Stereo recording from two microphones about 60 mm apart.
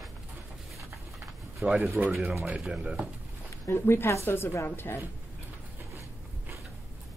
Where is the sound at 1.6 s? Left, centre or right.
Right.